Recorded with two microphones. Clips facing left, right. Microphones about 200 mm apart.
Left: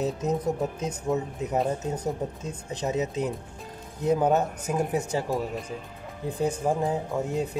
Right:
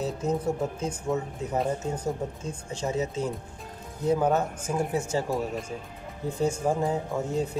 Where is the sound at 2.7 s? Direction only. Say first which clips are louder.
Left 1 dB; 20° left (ahead or behind).